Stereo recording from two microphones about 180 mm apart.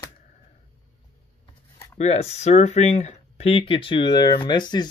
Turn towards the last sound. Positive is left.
turn(degrees=25)  # may be behind; listen again after turning